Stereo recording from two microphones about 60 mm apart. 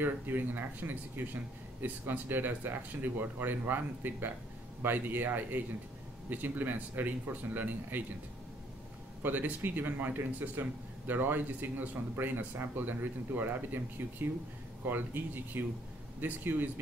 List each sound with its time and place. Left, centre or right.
0.0 s a man's voice: right
9.2 s a man's voice: right